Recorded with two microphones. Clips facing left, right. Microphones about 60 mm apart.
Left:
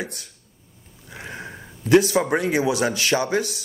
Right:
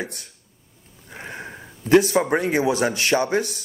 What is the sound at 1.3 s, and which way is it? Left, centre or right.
Sniff, centre.